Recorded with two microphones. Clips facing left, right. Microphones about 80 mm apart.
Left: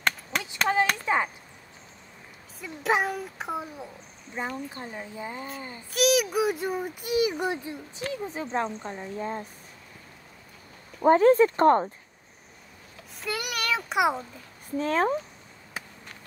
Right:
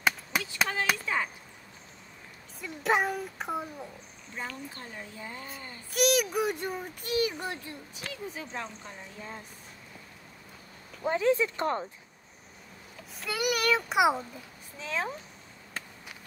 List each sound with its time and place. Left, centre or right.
0.3 s a sound: centre
1.0 s arrow: left
2.6 s a child's voice: centre
4.4 s speech: left
5.9 s speech: centre
8.0 s speech: left
11.1 s speech: left
13.2 s a child's voice: centre
14.8 s speech: left
15.8 s a sound: centre